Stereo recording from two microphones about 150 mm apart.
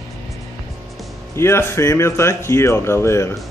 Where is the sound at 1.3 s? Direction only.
15° left (ahead or behind).